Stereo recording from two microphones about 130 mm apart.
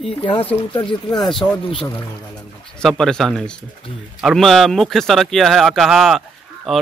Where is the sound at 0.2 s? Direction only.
35° left (ahead or behind).